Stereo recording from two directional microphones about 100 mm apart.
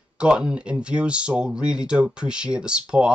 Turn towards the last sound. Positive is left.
turn(degrees=-10)  # may be behind; listen again after turning